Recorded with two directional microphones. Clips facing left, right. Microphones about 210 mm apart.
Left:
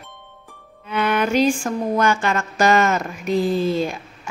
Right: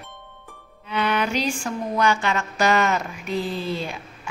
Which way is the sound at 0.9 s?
50° left (ahead or behind).